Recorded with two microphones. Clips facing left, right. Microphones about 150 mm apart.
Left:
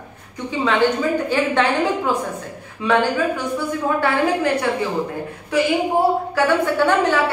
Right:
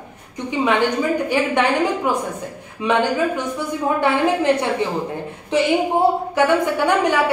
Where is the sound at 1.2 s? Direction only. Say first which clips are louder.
Even; 15° right (ahead or behind).